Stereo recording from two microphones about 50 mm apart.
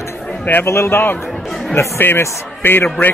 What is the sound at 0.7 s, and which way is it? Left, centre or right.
Speech, left.